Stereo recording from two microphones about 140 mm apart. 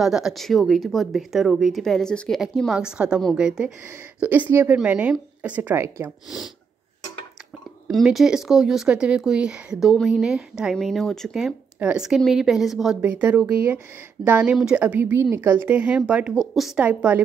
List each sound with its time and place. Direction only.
0.0 s a woman's voice: 5° right (ahead or behind)
7.9 s a woman's voice: centre (ahead or behind)